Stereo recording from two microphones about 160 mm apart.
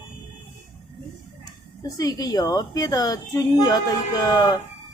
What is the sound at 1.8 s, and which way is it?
A woman's voice, 25° left (ahead or behind).